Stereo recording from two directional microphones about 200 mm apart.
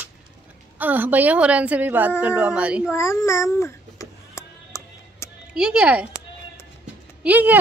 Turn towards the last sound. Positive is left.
turn(degrees=-10)  # may be behind; listen again after turning